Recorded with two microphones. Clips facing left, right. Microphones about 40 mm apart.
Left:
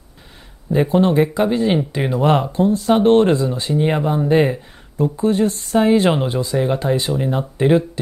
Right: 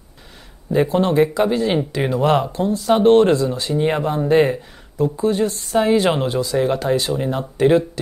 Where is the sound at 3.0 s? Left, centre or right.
Left.